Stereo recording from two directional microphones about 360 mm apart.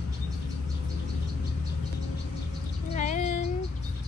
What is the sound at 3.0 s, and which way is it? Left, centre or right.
Female singing, centre.